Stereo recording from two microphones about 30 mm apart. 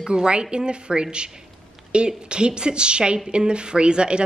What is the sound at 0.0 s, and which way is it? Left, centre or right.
Speech, right.